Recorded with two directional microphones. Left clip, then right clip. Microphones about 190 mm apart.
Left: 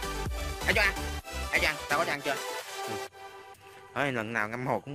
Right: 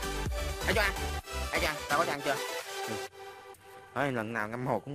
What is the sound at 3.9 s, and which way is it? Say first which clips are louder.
Speech: left 2 dB; 5° right (ahead or behind).